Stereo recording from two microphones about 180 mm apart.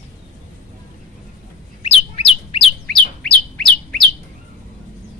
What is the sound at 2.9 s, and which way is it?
Bird, 5° left (ahead or behind).